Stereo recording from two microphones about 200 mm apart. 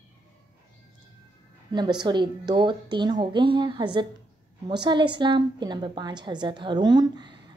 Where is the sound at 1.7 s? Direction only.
20° right (ahead or behind).